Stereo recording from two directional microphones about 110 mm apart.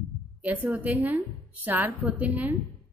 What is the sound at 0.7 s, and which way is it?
A woman's voice, 15° right (ahead or behind).